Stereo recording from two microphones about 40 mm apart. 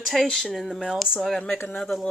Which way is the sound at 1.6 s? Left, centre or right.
Centre.